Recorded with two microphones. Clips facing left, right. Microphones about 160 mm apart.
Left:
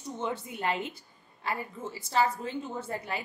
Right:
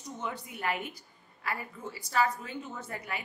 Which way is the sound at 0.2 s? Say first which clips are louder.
Left 4 dB; 25° left (ahead or behind).